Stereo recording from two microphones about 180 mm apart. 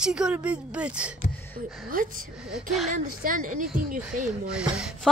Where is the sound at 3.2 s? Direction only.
50° right (ahead or behind).